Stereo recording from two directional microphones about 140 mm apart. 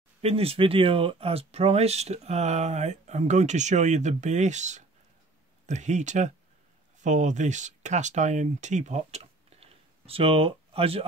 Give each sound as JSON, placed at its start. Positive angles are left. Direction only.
{"t": 0.2, "sound": "speech", "side_deg": -45}